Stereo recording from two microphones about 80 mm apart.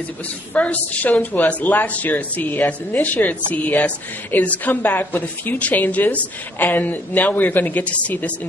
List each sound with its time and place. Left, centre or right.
0.6 s a woman's voice: centre